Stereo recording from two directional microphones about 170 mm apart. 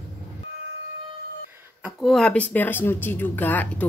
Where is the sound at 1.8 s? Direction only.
Centre (ahead or behind).